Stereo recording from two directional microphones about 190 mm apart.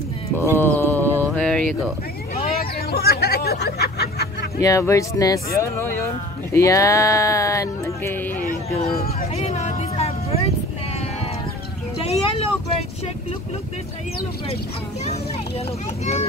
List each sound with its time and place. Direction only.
0.6 s a sound: 10° left (ahead or behind)
2.6 s hubbub: 55° left (ahead or behind)
4.6 s speech: 15° left (ahead or behind)
8.9 s a sound: 50° left (ahead or behind)
9.3 s music: 35° left (ahead or behind)
12.0 s vehicle: 30° left (ahead or behind)